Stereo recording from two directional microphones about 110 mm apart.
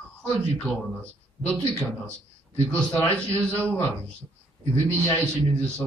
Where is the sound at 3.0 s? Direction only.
10° left (ahead or behind).